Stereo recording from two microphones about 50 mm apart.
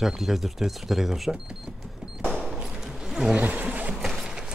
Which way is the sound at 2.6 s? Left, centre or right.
Centre.